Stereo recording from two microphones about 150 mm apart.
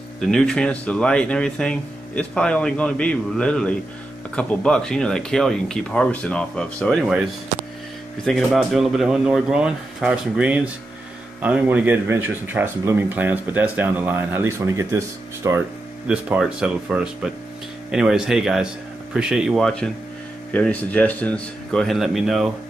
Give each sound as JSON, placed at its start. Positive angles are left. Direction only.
{"t": 0.2, "sound": "speech", "side_deg": 5}
{"t": 8.3, "sound": "speech", "side_deg": 0}
{"t": 16.1, "sound": "speech", "side_deg": -5}